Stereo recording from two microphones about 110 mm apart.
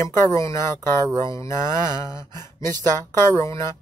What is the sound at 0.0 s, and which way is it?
Speech, 30° left (ahead or behind).